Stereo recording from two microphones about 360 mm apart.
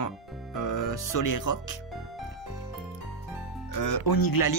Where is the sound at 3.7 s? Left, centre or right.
Left.